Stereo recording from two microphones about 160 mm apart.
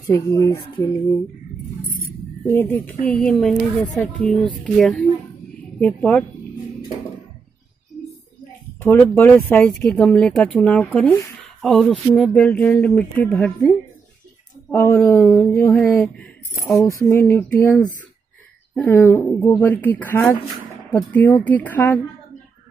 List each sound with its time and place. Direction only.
0.0 s a woman's voice: 15° left (ahead or behind)
2.7 s a woman's voice: 10° left (ahead or behind)
8.8 s a woman's voice: 10° left (ahead or behind)
15.1 s speech: centre (ahead or behind)
16.7 s coin: 20° left (ahead or behind)
17.1 s a woman's voice: 15° left (ahead or behind)